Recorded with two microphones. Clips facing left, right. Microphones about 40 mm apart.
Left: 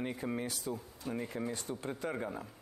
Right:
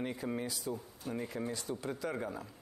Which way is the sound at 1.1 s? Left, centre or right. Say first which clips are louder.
Left 1 dB; left.